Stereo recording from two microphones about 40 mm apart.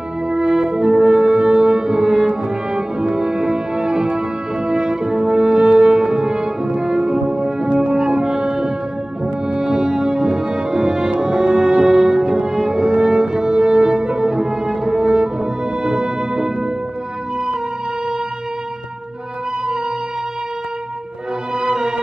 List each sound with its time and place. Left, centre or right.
0.3 s french horn: centre
9.6 s music: centre
13.0 s french horn: centre
13.9 s music: right
21.5 s music: centre